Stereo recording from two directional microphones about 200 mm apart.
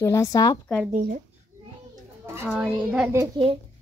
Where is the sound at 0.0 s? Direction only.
15° left (ahead or behind).